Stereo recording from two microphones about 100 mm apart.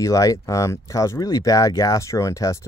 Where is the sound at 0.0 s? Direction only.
35° left (ahead or behind).